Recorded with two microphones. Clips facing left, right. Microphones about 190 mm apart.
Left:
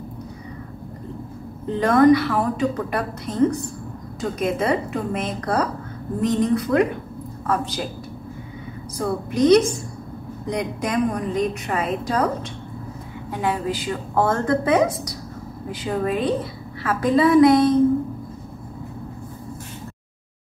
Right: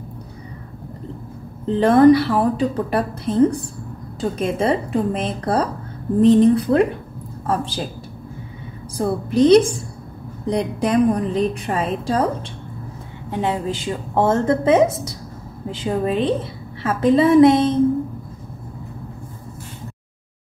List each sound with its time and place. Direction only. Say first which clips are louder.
1.8 s a woman's voice: right 3 dB; 30° right (ahead or behind)
8.9 s a woman's voice: right 4 dB; 30° right (ahead or behind)
13.3 s a woman's voice: right 2 dB; 25° right (ahead or behind)